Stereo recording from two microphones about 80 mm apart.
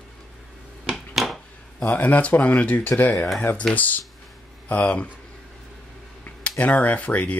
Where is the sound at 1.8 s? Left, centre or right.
Centre.